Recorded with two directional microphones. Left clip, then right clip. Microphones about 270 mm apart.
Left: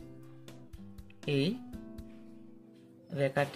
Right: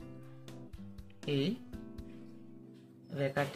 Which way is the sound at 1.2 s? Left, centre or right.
Centre.